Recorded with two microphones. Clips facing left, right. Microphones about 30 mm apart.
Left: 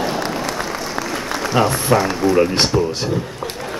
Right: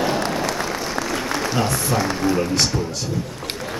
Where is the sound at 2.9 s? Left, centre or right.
Left.